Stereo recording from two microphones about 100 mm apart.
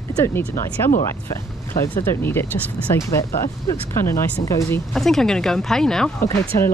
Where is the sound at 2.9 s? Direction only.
30° left (ahead or behind).